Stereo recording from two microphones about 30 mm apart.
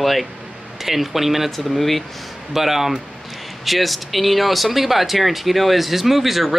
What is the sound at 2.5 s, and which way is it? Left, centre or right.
Speech, centre.